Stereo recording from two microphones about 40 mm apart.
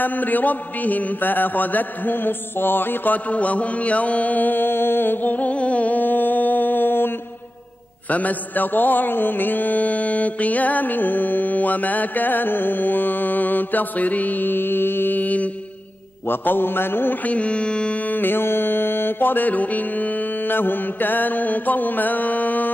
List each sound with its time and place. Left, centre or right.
0.0 s mantra: left
3.3 s mantra: left
8.1 s mantra: left
15.1 s mantra: left
16.3 s mantra: left
17.2 s carnatic music: left
18.0 s music: left